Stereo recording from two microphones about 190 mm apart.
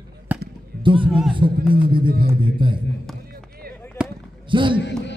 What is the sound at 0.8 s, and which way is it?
Music, 25° right (ahead or behind).